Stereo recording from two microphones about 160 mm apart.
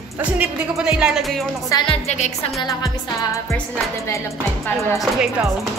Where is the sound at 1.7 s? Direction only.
30° left (ahead or behind).